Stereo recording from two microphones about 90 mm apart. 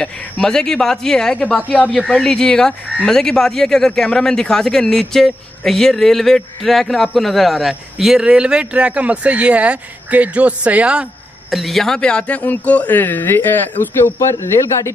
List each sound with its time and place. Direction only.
0.0 s speech: 5° left (ahead or behind)
1.6 s speech: 20° left (ahead or behind)
1.9 s speech: 5° left (ahead or behind); by 11.1 s 15° right (ahead or behind)
11.5 s speech: centre (ahead or behind); by 14.9 s 30° left (ahead or behind)